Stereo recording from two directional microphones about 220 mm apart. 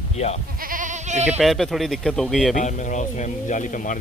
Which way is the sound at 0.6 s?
35° right (ahead or behind).